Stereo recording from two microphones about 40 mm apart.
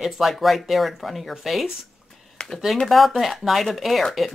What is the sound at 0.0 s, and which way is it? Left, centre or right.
Speech, centre.